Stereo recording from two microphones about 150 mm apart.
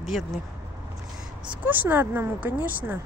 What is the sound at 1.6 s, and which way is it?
Speech, 10° right (ahead or behind).